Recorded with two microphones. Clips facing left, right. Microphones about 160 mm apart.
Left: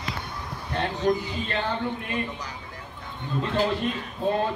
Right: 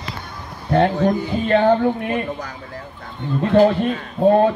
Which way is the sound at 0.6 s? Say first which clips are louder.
Right 8 dB; 55° right (ahead or behind).